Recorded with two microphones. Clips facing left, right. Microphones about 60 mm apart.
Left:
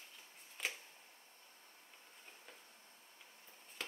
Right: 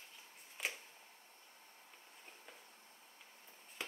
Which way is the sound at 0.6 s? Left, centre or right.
Centre.